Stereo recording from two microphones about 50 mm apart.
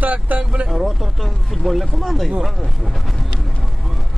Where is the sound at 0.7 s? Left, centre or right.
Centre.